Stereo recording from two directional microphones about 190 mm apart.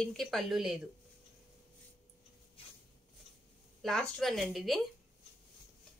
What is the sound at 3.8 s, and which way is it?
Speech, centre (ahead or behind).